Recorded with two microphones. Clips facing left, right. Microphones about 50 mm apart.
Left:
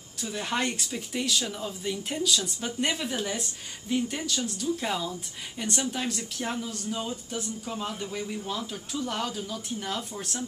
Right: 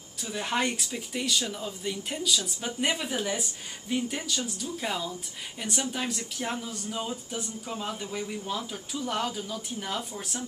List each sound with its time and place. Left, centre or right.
0.2 s speech: centre